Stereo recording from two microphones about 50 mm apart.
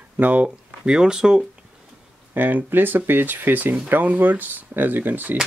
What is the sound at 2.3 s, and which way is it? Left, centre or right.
Speech, right.